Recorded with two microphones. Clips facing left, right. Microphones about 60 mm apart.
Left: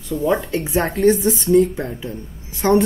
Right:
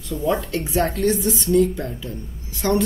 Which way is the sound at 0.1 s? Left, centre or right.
Centre.